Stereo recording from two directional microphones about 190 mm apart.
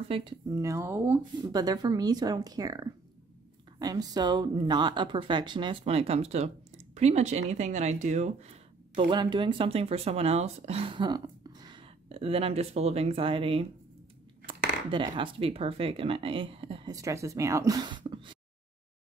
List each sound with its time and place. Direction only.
0.1 s speech: 30° right (ahead or behind)
0.5 s speech: 15° right (ahead or behind); by 9.0 s 35° right (ahead or behind)
9.1 s speech: 25° right (ahead or behind)
16.9 s speech: 15° right (ahead or behind)